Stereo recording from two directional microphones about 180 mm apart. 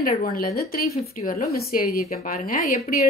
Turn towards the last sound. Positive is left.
turn(degrees=50)  # may be behind; listen again after turning